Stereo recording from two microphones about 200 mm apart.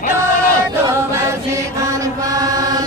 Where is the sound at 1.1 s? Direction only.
15° right (ahead or behind).